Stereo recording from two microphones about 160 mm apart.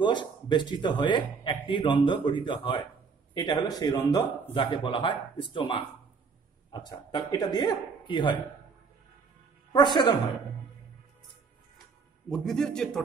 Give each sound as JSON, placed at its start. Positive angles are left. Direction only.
{"t": 0.0, "sound": "speech", "side_deg": 30}
{"t": 9.7, "sound": "a woman's voice", "side_deg": 25}
{"t": 12.3, "sound": "a man's voice", "side_deg": 5}